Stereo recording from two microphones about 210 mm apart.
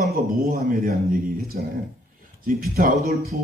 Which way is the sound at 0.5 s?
45° right (ahead or behind).